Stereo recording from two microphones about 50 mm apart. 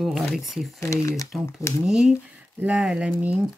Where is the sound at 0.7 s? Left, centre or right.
Left.